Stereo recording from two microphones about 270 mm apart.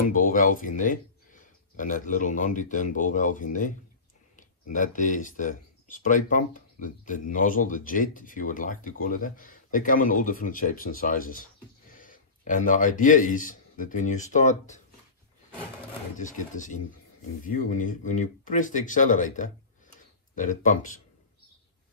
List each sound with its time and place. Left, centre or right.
0.1 s a man's voice: left
16.2 s speech: left